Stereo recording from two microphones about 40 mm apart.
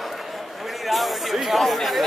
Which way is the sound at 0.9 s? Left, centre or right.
Centre.